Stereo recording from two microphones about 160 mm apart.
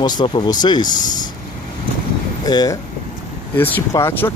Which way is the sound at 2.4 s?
25° left (ahead or behind).